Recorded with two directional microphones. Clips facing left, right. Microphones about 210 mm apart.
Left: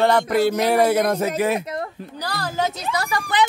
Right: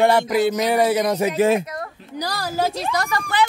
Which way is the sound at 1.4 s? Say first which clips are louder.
Right 4 dB; 25° right (ahead or behind).